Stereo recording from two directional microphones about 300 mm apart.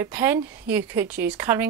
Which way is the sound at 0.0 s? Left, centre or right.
Centre.